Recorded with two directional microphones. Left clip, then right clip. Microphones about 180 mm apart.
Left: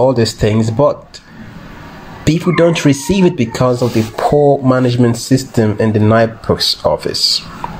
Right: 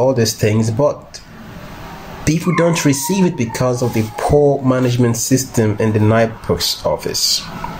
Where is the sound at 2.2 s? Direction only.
15° left (ahead or behind).